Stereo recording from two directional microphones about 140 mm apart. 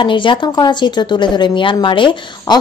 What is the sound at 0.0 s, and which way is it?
Speech, 35° left (ahead or behind).